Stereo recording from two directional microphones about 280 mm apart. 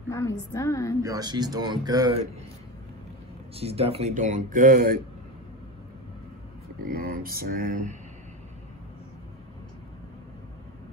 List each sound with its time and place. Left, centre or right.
0.5 s a woman's voice: centre
1.0 s speech: centre
3.5 s speech: right
6.8 s speech: right